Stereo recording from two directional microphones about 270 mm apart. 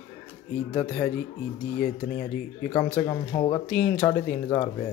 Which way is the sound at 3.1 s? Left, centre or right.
Centre.